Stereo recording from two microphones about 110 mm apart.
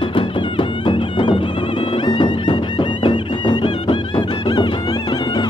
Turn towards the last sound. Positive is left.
turn(degrees=45)  # may be behind; listen again after turning